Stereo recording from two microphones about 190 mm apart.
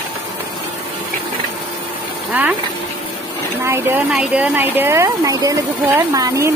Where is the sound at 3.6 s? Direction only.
10° right (ahead or behind).